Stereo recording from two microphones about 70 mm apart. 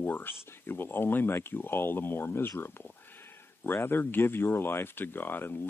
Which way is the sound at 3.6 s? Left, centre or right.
Left.